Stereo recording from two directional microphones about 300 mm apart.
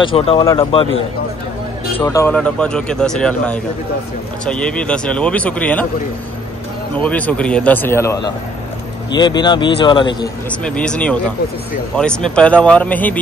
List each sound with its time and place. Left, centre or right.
0.0 s speech: centre
2.0 s speech: centre
7.0 s speech: centre
10.6 s speech: centre